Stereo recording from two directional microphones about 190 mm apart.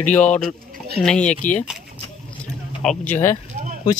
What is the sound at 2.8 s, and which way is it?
Speech, 5° left (ahead or behind).